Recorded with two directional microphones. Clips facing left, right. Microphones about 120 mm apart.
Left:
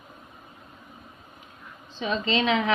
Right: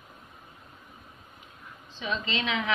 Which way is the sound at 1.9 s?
40° left (ahead or behind).